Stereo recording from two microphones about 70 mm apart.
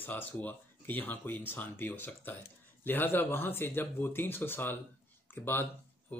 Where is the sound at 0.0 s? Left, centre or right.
Left.